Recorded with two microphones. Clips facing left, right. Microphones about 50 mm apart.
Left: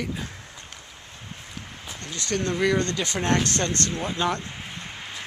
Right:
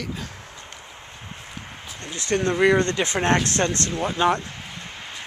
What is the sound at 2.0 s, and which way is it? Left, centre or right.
Speech, centre.